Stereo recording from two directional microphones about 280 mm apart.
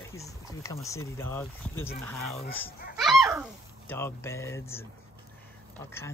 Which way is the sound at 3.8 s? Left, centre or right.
Centre.